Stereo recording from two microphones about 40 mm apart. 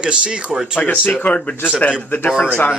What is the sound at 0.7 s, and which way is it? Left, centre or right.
Speech, left.